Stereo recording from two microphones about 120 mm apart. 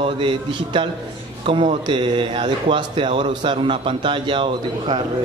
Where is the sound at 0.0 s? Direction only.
45° right (ahead or behind).